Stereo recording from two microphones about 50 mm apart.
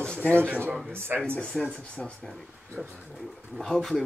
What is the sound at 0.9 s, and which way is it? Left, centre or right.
Speech, right.